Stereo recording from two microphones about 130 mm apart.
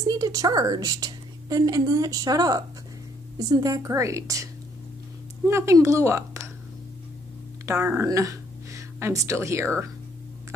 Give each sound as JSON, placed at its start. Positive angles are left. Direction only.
{"t": 0.1, "sound": "a woman's voice", "side_deg": -30}
{"t": 5.5, "sound": "a woman's voice", "side_deg": -25}
{"t": 7.6, "sound": "speech", "side_deg": -25}